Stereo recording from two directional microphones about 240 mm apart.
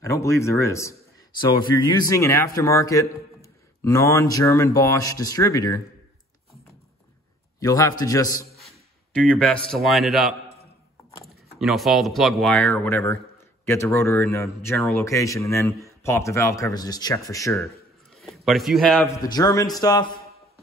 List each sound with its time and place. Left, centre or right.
0.0 s speech: centre
7.6 s speech: centre
11.6 s speech: centre
17.6 s a sound: centre
19.3 s speech: centre